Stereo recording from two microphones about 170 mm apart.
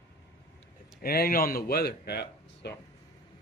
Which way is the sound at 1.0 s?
60° left (ahead or behind).